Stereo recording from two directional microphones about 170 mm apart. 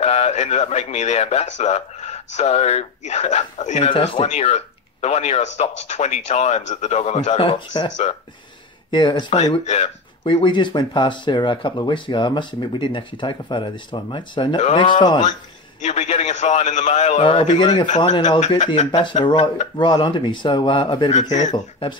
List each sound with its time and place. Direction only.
0.0 s speech: 40° left (ahead or behind)
8.9 s speech: 30° left (ahead or behind)
9.3 s speech: 40° left (ahead or behind)
15.8 s a man's voice: 40° left (ahead or behind)
17.2 s speech: 30° left (ahead or behind)
17.8 s a man's voice: 45° left (ahead or behind)
18.9 s speech: 30° left (ahead or behind)
21.1 s a man's voice: 45° left (ahead or behind)
21.5 s speech: 30° left (ahead or behind)